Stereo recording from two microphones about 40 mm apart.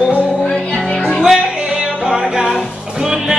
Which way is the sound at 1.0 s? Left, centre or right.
Centre.